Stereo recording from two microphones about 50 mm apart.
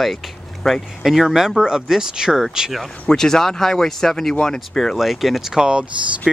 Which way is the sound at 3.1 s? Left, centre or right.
Centre.